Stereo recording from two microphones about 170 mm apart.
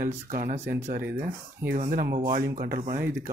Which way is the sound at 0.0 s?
55° right (ahead or behind).